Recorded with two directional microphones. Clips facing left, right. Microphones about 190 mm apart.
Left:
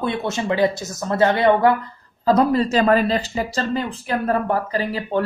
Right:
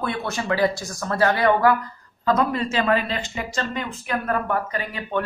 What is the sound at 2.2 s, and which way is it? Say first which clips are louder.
Speech: left 5 dB; 35° left (ahead or behind).